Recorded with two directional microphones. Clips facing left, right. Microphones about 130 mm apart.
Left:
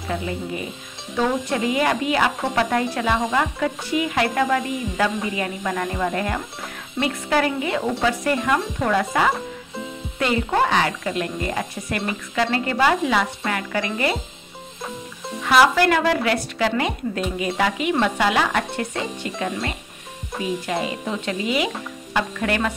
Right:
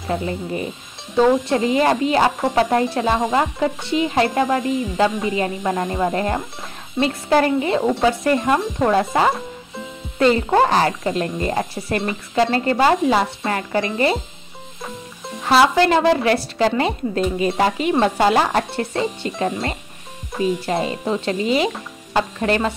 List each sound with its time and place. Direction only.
0.1 s speech: 40° right (ahead or behind)
10.1 s speech: 35° right (ahead or behind)
15.4 s speech: 30° right (ahead or behind)